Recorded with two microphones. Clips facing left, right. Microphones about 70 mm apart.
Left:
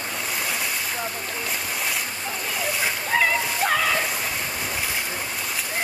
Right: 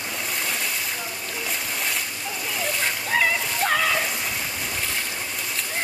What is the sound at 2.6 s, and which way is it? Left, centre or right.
Water, centre.